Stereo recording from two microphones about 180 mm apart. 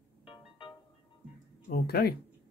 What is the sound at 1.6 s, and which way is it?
Speech, 60° left (ahead or behind).